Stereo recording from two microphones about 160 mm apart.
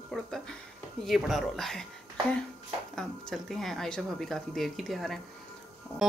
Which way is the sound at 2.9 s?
Centre (ahead or behind).